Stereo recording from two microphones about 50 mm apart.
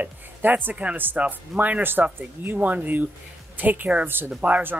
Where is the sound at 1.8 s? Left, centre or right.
Right.